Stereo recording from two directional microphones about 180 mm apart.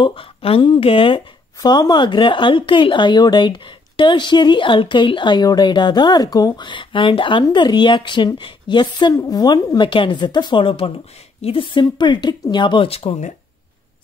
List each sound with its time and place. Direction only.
0.0 s speech: 30° left (ahead or behind)